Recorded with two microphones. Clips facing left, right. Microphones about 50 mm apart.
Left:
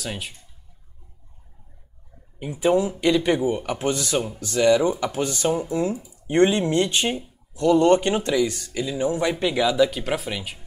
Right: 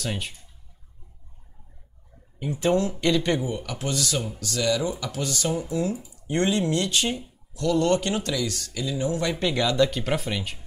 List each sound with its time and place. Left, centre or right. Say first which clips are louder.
0.0 s speech: right 1 dB; centre
2.3 s speech: left 3 dB; centre
3.4 s speech: left 7 dB; left
9.3 s speech: left 3 dB; centre